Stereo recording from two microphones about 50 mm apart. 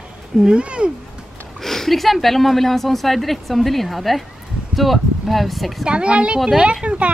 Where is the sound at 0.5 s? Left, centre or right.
Right.